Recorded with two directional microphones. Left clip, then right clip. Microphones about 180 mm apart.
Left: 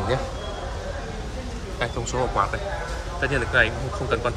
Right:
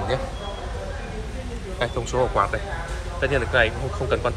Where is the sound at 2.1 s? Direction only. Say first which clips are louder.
Right 3 dB; 20° right (ahead or behind).